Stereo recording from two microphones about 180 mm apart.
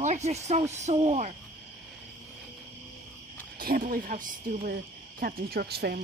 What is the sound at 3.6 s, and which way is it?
Speech, 55° right (ahead or behind).